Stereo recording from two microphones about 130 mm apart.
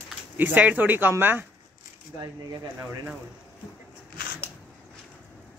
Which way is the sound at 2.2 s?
30° right (ahead or behind).